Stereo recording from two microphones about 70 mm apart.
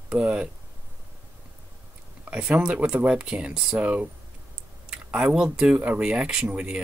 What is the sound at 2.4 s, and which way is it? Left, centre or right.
Speech, centre.